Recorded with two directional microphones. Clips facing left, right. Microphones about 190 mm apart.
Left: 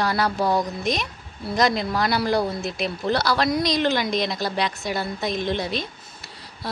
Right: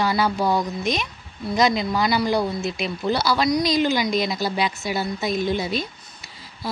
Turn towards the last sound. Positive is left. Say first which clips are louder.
# right 2 dB
turn(degrees=0)  # may be behind; listen again after turning